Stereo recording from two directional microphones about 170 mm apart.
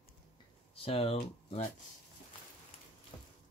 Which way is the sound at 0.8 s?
35° left (ahead or behind).